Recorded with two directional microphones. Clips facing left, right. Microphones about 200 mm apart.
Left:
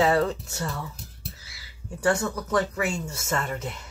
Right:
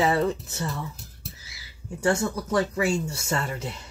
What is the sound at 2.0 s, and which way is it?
Speech, 25° right (ahead or behind).